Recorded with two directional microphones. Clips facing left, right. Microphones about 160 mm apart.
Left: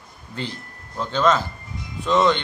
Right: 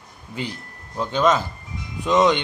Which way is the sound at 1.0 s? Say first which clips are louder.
Right 1 dB; 15° right (ahead or behind).